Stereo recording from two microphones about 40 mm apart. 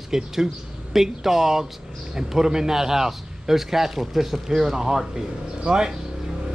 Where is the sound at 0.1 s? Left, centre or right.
Centre.